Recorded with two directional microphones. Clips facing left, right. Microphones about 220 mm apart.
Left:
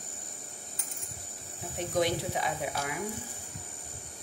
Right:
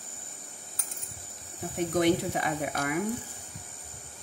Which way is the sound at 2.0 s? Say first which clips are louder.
Right 4 dB; 55° right (ahead or behind).